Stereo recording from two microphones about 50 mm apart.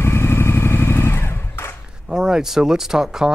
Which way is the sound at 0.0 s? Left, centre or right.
Left.